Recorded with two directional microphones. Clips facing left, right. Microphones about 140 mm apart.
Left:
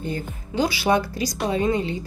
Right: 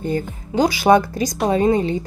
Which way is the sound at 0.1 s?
45° right (ahead or behind).